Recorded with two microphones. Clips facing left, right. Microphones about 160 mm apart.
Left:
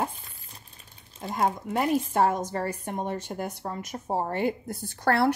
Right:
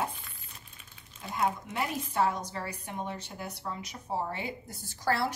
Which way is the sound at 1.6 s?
50° left (ahead or behind).